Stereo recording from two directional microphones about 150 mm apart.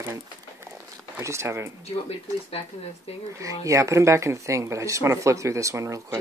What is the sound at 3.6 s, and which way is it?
Speech, 20° right (ahead or behind).